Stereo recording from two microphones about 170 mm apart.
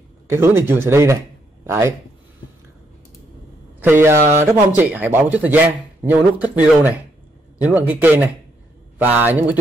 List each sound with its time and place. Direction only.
0.3 s speech: 15° right (ahead or behind)
4.0 s speech: 15° right (ahead or behind)